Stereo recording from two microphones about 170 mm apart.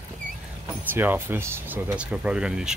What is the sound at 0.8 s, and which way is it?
Speech, 10° right (ahead or behind).